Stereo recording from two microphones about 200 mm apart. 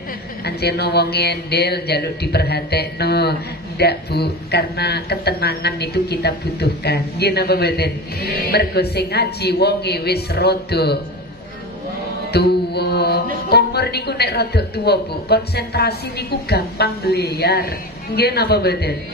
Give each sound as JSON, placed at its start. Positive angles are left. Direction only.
{"t": 0.5, "sound": "speech", "side_deg": 55}
{"t": 12.3, "sound": "music", "side_deg": 55}